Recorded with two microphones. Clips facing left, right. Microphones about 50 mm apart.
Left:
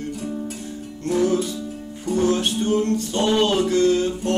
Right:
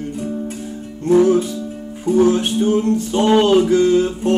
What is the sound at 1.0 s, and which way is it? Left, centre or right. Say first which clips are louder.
Music: right 7 dB; centre.